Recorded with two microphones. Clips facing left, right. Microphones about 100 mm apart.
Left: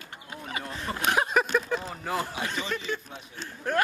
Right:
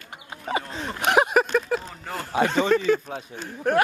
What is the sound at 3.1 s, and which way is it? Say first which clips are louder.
Speech: right 8 dB; 45° right (ahead or behind).